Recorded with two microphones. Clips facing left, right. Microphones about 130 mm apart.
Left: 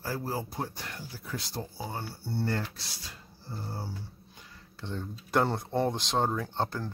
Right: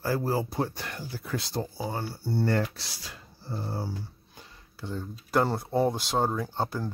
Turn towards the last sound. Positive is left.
turn(degrees=-10)  # may be behind; listen again after turning